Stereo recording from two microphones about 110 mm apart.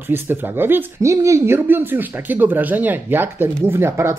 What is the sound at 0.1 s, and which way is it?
Speech, 20° right (ahead or behind).